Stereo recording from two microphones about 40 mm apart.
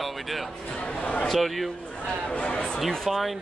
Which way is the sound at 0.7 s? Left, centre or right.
Left.